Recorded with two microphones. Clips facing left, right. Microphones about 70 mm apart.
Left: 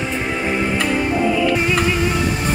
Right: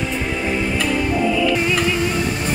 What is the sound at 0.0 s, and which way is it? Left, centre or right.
Music, left.